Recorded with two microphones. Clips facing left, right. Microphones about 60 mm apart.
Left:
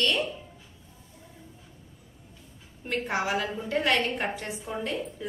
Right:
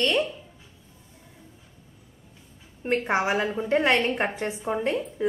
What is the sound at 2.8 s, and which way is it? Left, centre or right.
A woman's voice, right.